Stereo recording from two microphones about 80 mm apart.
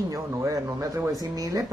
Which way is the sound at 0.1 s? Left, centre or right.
Right.